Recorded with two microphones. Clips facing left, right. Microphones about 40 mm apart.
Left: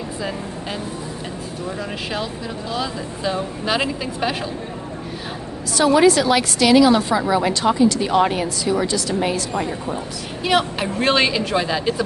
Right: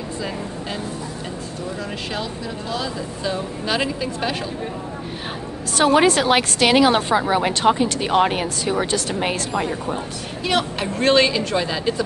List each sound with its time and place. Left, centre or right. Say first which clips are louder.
2.7 s speech: left 1 dB; centre
5.8 s a woman's voice: left 1 dB; right
10.4 s speech: left 3 dB; centre